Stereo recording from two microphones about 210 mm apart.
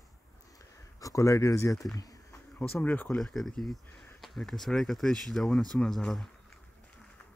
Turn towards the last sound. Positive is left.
turn(degrees=0)  # may be behind; listen again after turning